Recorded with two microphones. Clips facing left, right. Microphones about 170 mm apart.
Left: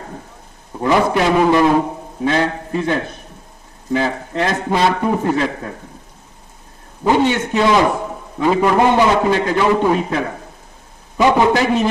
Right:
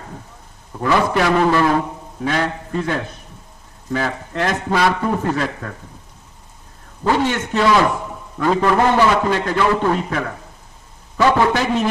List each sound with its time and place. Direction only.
0.7 s a man's voice: 15° left (ahead or behind)
5.1 s a man's voice: 10° left (ahead or behind)
7.0 s a man's voice: 15° left (ahead or behind)